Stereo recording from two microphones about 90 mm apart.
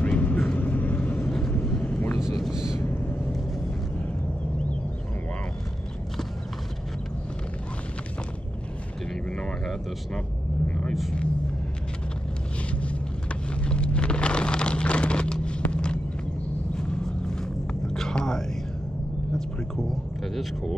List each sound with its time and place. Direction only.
0.0 s vehicle: 15° left (ahead or behind)
2.2 s speech: centre (ahead or behind)
2.8 s vehicle: 25° left (ahead or behind)
9.1 s vehicle: 5° left (ahead or behind)
13.6 s a sound: 15° left (ahead or behind)